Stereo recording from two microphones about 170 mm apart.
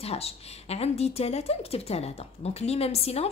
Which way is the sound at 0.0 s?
35° left (ahead or behind).